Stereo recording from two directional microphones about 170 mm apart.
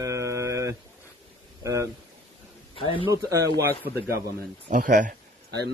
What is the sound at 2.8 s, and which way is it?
Speech, 30° left (ahead or behind).